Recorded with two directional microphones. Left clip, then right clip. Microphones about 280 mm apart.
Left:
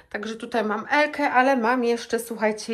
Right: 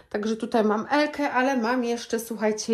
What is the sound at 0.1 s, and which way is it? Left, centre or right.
A woman's voice, centre.